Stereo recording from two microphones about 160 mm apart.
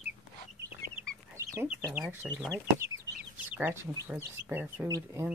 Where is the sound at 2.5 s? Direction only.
20° right (ahead or behind).